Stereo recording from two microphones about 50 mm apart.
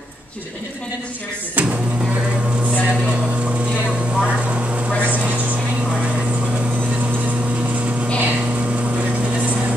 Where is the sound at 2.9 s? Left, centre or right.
Right.